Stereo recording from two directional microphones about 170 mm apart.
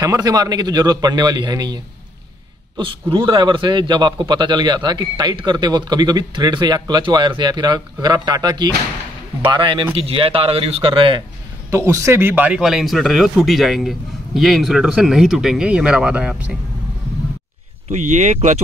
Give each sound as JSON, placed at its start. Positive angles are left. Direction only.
{"t": 0.0, "sound": "a man's voice", "side_deg": -20}
{"t": 2.8, "sound": "a man's voice", "side_deg": -30}
{"t": 11.7, "sound": "speech", "side_deg": -15}
{"t": 17.8, "sound": "speech", "side_deg": -45}